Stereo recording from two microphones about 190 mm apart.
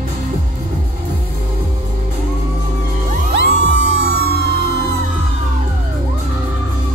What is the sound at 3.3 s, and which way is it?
Music, 60° right (ahead or behind).